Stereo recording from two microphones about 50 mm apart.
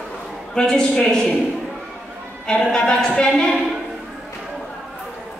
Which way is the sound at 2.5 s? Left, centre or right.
Centre.